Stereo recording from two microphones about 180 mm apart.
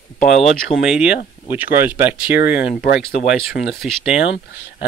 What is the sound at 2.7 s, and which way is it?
Speech, 50° left (ahead or behind).